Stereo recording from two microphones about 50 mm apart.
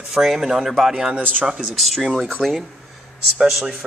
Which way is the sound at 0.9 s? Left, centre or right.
Centre.